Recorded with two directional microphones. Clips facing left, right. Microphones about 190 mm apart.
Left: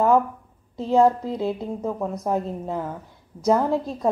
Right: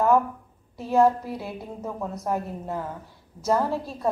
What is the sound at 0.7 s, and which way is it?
A woman's voice, 20° left (ahead or behind).